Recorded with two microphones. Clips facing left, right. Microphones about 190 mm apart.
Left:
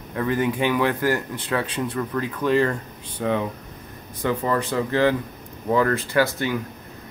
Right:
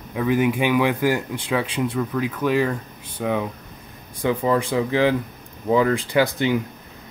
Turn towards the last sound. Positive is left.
turn(degrees=-20)  # may be behind; listen again after turning